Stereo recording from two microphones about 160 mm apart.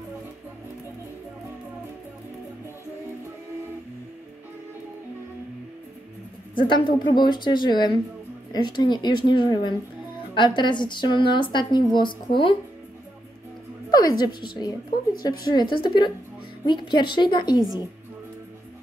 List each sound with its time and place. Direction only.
6.5 s a woman's voice: 30° left (ahead or behind)
13.8 s a woman's voice: 25° left (ahead or behind)